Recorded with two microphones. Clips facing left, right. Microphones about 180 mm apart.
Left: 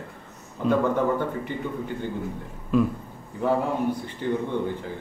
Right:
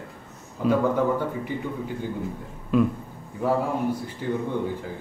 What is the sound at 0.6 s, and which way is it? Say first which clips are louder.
Speech: right 1 dB; 5° right (ahead or behind).